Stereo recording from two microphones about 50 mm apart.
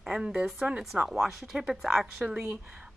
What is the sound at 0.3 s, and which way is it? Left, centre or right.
Speech, centre.